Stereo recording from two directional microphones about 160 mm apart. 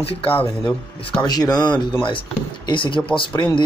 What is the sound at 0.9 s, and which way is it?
Speech, 30° left (ahead or behind).